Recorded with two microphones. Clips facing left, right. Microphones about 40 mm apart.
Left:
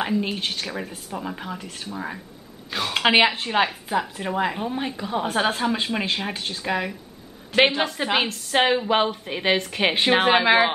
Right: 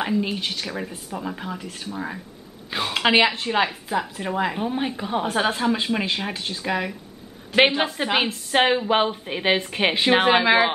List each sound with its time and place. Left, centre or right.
0.0 s a woman's voice: centre
5.2 s a woman's voice: centre
9.9 s a woman's voice: centre